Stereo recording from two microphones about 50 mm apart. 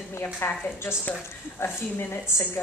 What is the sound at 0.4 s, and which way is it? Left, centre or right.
Speech, left.